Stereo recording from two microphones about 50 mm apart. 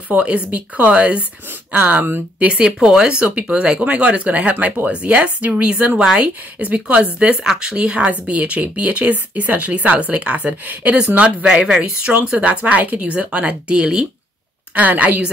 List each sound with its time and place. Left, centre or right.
0.1 s speech: right
2.6 s speech: centre
14.7 s a woman's voice: right